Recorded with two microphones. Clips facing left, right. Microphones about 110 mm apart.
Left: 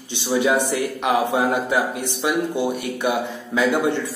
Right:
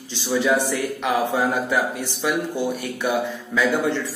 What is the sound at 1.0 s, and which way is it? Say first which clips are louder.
A man's voice: left 2 dB; 15° left (ahead or behind).